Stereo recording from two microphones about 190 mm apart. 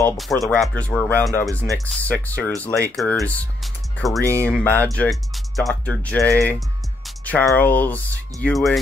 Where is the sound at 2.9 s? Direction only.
5° left (ahead or behind).